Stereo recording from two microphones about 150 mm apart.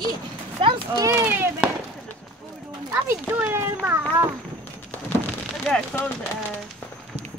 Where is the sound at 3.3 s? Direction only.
15° right (ahead or behind).